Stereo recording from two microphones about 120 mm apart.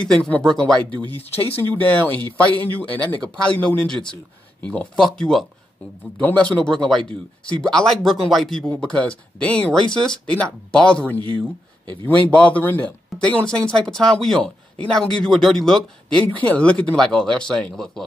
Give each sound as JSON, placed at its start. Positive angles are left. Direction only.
{"t": 0.0, "sound": "speech", "side_deg": 10}
{"t": 1.1, "sound": "speech", "side_deg": 55}
{"t": 2.0, "sound": "speech", "side_deg": 15}
{"t": 12.3, "sound": "speech", "side_deg": 10}